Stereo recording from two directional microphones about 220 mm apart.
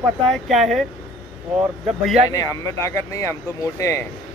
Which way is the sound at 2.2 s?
15° left (ahead or behind).